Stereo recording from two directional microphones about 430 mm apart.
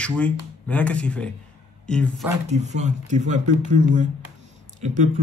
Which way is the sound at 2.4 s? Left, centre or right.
Centre.